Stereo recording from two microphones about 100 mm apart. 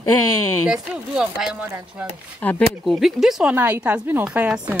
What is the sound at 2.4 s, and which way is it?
Speech, 15° left (ahead or behind).